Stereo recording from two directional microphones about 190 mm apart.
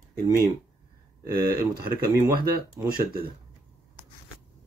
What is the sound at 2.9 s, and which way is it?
Speech, 50° right (ahead or behind).